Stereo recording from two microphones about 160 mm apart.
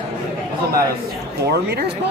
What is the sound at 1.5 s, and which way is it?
Speech, 90° right.